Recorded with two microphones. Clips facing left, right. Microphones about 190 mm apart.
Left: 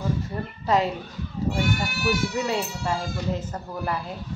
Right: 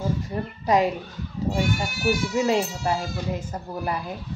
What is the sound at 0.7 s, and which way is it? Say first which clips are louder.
Speech: right 2 dB; 15° right (ahead or behind).